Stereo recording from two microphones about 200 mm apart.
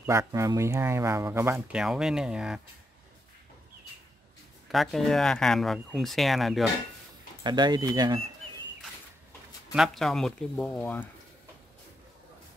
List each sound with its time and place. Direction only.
0.0 s speech: 15° right (ahead or behind)
4.6 s speech: centre (ahead or behind)
7.4 s speech: 20° right (ahead or behind)
9.8 s speech: centre (ahead or behind)